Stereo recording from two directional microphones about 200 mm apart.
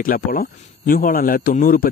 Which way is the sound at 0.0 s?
45° left (ahead or behind).